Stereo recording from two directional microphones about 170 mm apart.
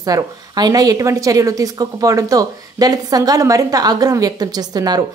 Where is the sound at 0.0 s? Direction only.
20° right (ahead or behind).